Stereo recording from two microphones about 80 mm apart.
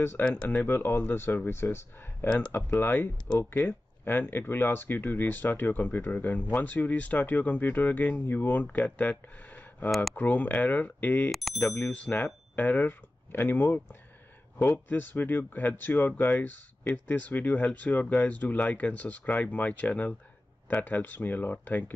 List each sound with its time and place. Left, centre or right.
0.2 s speech: centre
0.7 s speech: left
9.8 s speech: centre
10.1 s speech: centre
11.3 s speech: centre
11.8 s speech: left